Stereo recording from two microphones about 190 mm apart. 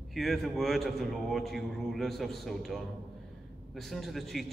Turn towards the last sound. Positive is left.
turn(degrees=0)  # may be behind; listen again after turning